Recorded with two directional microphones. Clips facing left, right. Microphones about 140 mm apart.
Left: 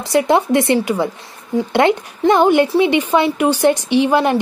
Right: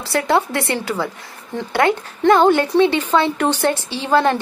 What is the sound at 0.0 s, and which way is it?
Speech, 15° left (ahead or behind).